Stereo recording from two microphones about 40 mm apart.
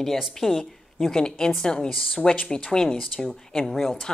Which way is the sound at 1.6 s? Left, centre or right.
Centre.